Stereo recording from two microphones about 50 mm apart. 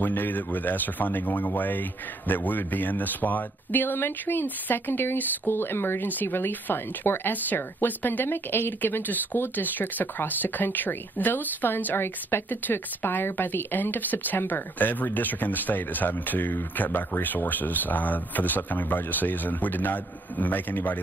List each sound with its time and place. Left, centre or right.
0.0 s speech: left